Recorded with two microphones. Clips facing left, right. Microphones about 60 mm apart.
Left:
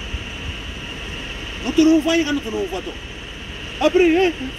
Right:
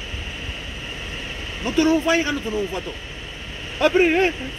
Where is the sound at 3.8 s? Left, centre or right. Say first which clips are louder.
Left 2 dB; right.